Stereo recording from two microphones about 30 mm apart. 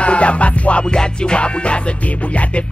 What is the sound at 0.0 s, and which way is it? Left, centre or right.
Music, left.